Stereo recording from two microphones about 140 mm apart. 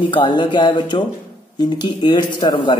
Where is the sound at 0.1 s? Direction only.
35° left (ahead or behind).